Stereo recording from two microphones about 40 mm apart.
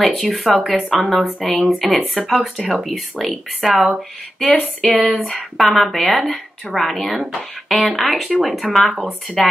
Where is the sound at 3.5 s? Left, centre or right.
Centre.